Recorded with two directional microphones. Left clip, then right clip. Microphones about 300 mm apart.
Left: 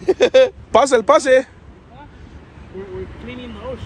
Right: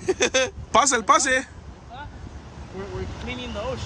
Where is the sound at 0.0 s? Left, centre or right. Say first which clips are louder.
Left 9 dB; centre.